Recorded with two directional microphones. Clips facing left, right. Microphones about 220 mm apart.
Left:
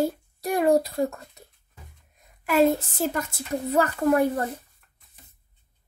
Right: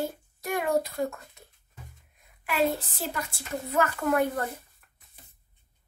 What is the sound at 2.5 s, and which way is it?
A woman's voice, 45° left (ahead or behind).